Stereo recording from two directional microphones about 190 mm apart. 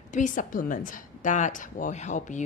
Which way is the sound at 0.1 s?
45° left (ahead or behind).